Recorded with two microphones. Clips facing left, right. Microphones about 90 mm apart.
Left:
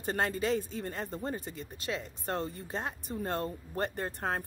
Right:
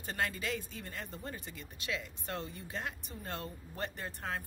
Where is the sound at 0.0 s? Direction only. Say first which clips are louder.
Left 6 dB; 40° left (ahead or behind).